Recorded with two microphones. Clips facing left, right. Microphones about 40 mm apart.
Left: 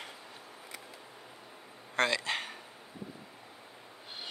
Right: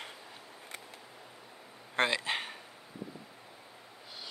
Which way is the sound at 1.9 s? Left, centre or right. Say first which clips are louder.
Even; centre.